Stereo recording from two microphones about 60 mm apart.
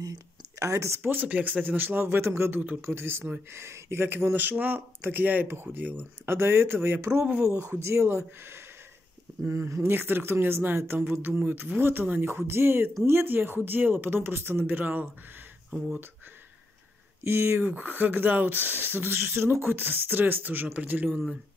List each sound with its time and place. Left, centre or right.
0.0 s a sound: right
1.0 s speech: right
7.4 s speech: right
9.5 s speech: right
9.8 s speech: right
14.7 s speech: right
17.2 s speech: right